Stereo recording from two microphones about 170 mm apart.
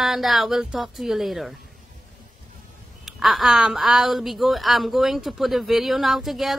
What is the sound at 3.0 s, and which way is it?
Speech, centre (ahead or behind).